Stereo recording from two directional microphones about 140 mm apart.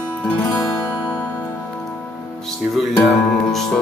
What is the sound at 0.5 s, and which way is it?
Music, 20° left (ahead or behind).